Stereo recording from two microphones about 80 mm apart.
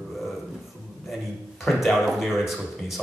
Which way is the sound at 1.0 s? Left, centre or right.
Centre.